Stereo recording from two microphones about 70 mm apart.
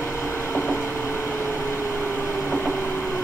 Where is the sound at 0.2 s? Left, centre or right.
Left.